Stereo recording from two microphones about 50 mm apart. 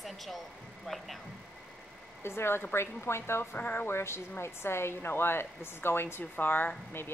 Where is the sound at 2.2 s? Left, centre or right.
Left.